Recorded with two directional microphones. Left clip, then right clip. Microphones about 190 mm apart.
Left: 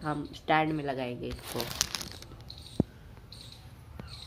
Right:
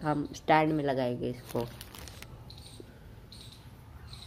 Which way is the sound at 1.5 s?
10° right (ahead or behind).